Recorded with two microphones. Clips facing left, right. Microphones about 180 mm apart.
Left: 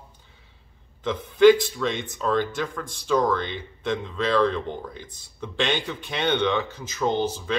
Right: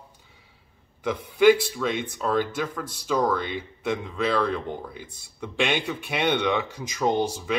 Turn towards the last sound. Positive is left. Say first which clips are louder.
# even
turn(degrees=-10)  # may be behind; listen again after turning